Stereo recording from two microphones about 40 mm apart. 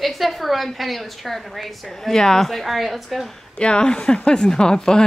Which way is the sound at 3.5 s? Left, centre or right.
Left.